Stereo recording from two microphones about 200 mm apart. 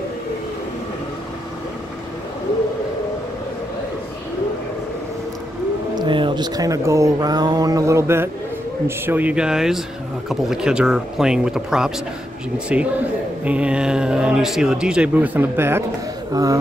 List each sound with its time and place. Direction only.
5.9 s speech: 25° right (ahead or behind)